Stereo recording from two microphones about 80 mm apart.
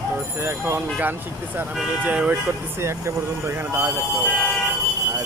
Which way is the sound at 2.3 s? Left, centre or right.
Right.